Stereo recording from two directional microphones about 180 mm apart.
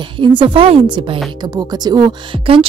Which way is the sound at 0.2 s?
25° right (ahead or behind).